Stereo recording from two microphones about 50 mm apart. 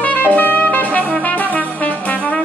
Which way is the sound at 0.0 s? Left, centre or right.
Left.